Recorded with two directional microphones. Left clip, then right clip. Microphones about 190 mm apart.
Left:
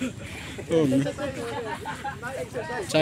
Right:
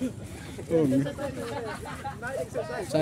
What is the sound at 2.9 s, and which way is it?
Speech, 5° right (ahead or behind).